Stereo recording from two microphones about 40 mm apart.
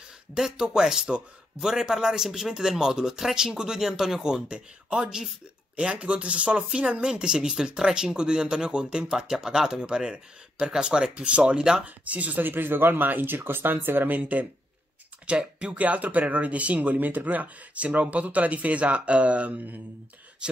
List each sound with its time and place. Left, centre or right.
0.3 s a man's voice: centre
11.8 s speech: right
12.4 s speech: right
15.2 s speech: right
15.8 s speech: right